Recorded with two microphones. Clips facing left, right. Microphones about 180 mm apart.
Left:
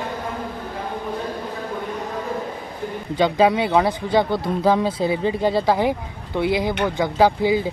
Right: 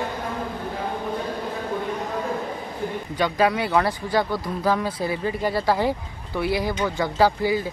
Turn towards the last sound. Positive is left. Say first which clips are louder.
# left 3 dB
turn(degrees=20)  # may be behind; listen again after turning